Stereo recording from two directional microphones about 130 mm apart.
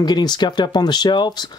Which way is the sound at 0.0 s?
30° left (ahead or behind).